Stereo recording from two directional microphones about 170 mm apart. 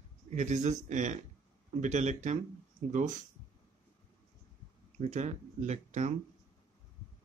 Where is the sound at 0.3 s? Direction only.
45° right (ahead or behind).